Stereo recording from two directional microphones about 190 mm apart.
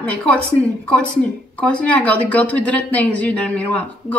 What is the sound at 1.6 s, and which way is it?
A woman's voice, 5° left (ahead or behind).